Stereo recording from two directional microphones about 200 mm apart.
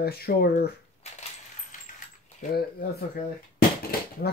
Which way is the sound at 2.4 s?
45° left (ahead or behind).